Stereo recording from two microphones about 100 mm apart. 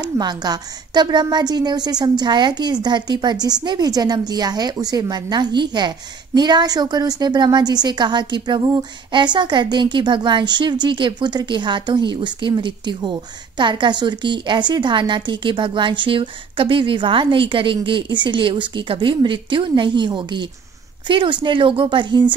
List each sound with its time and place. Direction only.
0.2 s a woman's voice: 45° right (ahead or behind)